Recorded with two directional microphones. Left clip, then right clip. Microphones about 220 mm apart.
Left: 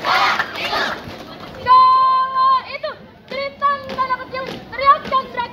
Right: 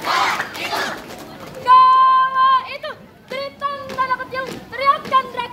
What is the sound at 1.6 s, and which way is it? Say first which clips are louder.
Children playing: right 1 dB; 55° right (ahead or behind).